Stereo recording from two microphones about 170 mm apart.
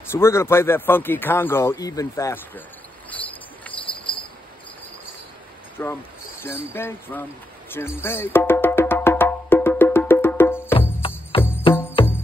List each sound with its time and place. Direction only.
0.1 s speech: 15° left (ahead or behind)
3.1 s cricket: 10° left (ahead or behind)
3.8 s cricket: 30° left (ahead or behind)
5.8 s speech: 15° left (ahead or behind)
7.7 s wood block: 15° left (ahead or behind)
12.0 s music: 30° left (ahead or behind)